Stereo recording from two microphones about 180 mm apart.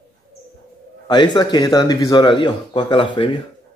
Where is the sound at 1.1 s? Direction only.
25° left (ahead or behind).